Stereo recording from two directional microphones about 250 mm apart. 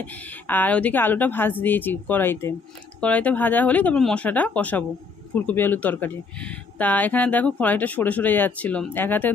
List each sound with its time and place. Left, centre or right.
0.0 s speech: centre